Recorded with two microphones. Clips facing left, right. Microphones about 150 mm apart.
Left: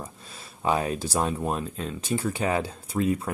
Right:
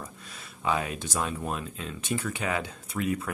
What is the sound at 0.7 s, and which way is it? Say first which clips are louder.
Speech: left 4 dB; 35° left (ahead or behind).